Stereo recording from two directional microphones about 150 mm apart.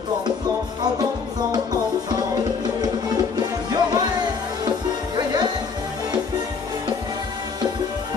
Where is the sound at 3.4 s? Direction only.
25° right (ahead or behind).